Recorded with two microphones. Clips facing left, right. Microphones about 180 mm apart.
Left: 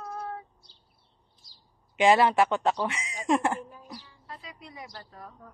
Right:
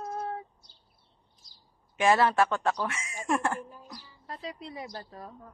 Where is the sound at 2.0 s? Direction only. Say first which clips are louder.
Left 2 dB; 15° left (ahead or behind).